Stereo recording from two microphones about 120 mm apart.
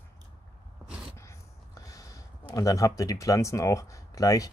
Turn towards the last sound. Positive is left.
turn(degrees=30)  # may be behind; listen again after turning